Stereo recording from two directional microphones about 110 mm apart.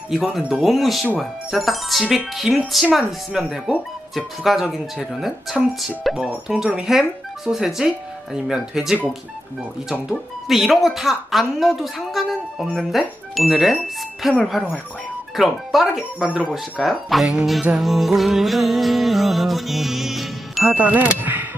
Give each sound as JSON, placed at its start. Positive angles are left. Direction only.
{"t": 0.1, "sound": "speech", "side_deg": -5}
{"t": 20.6, "sound": "speech", "side_deg": -15}